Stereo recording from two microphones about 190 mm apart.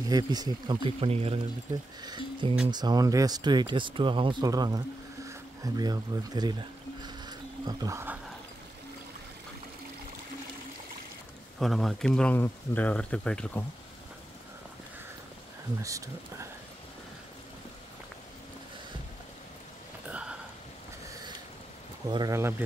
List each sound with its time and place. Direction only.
0.0 s speech: 20° right (ahead or behind)
7.0 s music: 20° right (ahead or behind)
11.6 s speech: centre (ahead or behind)
15.8 s speech: 15° right (ahead or behind)
20.1 s a sound: 5° right (ahead or behind)
22.0 s speech: 20° right (ahead or behind)